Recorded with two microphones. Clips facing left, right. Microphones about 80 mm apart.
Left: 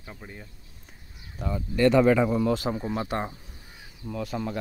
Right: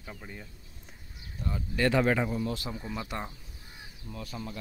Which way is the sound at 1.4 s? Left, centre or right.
Left.